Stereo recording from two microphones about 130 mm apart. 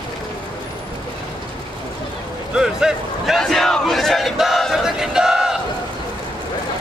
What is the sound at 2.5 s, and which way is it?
Speech, 5° right (ahead or behind).